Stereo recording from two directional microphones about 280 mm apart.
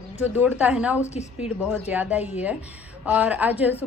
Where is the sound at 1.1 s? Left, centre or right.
Left.